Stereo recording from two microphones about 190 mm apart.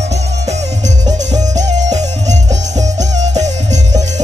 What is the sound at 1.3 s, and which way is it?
Music, 40° right (ahead or behind).